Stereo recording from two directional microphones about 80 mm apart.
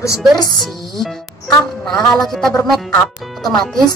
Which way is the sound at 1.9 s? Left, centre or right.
Centre.